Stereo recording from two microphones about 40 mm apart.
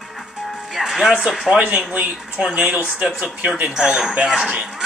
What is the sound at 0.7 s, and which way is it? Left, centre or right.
Music, centre.